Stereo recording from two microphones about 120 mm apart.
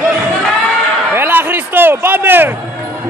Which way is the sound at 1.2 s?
15° right (ahead or behind).